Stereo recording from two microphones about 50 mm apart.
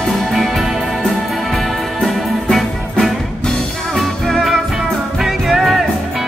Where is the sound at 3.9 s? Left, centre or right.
Centre.